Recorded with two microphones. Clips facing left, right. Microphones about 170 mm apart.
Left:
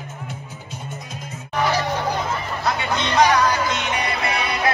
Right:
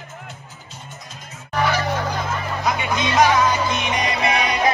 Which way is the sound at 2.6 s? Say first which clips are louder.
Right 1 dB; 15° right (ahead or behind).